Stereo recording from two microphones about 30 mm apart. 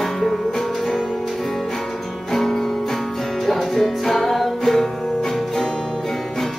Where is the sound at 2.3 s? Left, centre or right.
Centre.